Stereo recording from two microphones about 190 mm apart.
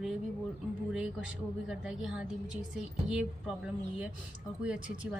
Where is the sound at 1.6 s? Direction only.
5° right (ahead or behind).